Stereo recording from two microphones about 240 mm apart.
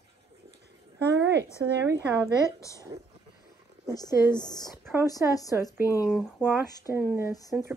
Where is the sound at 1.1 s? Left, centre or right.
Right.